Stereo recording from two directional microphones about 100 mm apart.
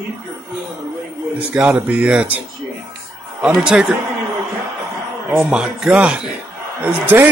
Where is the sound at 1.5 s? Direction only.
10° right (ahead or behind).